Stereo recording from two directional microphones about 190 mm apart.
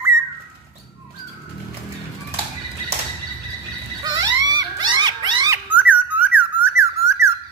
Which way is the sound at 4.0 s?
20° right (ahead or behind).